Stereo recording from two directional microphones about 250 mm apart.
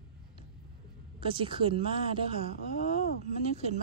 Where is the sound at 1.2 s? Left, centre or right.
Right.